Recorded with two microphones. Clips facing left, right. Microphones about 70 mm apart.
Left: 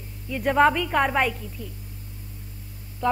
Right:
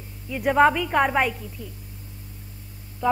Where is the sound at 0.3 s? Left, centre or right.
Centre.